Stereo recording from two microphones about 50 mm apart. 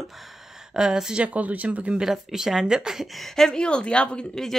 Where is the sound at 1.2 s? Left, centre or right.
Right.